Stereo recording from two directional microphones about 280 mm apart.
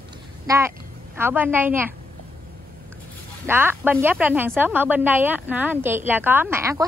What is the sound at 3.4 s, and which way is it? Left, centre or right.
Speech, centre.